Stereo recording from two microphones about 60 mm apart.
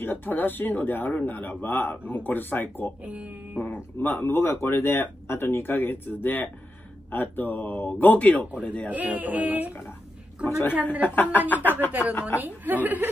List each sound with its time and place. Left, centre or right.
0.0 s speech: left
3.0 s speech: right
3.5 s speech: left
8.9 s speech: right
10.4 s speech: left
12.4 s speech: right